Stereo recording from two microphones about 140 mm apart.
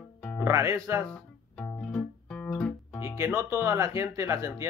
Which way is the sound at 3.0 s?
20° right (ahead or behind).